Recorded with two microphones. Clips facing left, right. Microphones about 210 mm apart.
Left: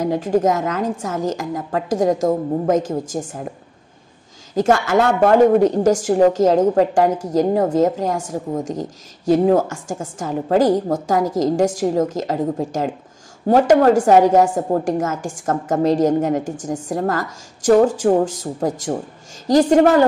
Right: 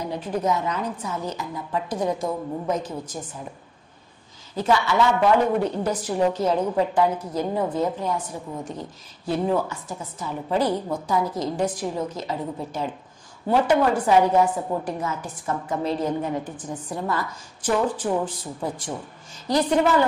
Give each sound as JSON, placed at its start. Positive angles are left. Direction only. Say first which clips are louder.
{"t": 0.0, "sound": "speech", "louder": "left 9 dB", "side_deg": 45}
{"t": 4.6, "sound": "speech", "louder": "left 5 dB", "side_deg": 45}